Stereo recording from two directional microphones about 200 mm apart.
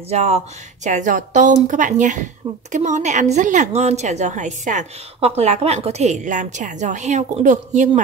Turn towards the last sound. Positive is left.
turn(degrees=-35)  # may be behind; listen again after turning